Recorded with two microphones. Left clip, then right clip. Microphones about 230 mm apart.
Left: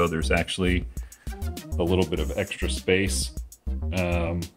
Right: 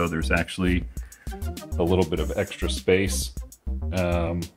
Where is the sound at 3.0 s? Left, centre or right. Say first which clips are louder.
Even; left.